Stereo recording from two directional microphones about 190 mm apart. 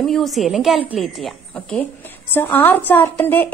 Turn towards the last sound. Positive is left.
turn(degrees=10)  # may be behind; listen again after turning